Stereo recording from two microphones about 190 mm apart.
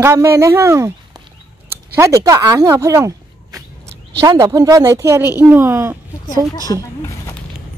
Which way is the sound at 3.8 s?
65° right (ahead or behind).